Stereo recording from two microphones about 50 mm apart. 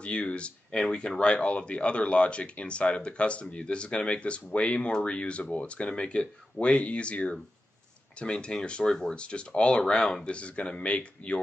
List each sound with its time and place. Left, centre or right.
0.0 s speech: left